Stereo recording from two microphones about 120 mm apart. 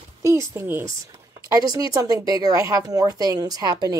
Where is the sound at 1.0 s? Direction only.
30° right (ahead or behind).